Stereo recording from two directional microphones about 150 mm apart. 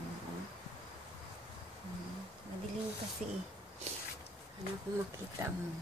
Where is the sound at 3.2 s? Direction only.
55° right (ahead or behind).